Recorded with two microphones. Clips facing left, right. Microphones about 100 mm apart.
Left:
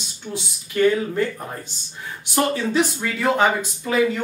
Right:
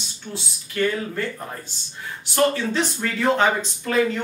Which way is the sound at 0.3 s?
15° left (ahead or behind).